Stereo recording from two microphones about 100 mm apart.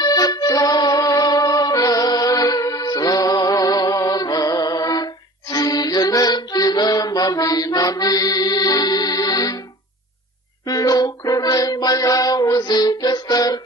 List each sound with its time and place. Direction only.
0.0 s music: 40° left (ahead or behind)
10.6 s music: 35° left (ahead or behind)